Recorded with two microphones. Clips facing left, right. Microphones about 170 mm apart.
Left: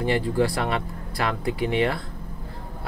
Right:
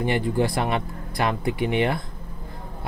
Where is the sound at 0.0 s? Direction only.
20° right (ahead or behind).